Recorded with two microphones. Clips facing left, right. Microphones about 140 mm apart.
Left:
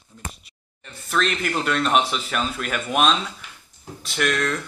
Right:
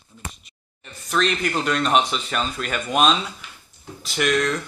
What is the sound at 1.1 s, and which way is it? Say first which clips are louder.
Speech: right 1 dB; centre (ahead or behind).